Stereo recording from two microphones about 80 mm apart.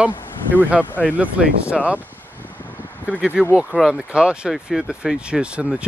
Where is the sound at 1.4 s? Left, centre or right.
Centre.